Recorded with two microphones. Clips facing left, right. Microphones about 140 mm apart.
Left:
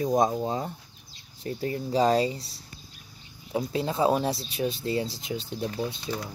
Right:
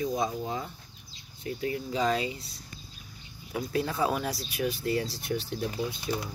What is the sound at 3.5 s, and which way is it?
Speech, 25° left (ahead or behind).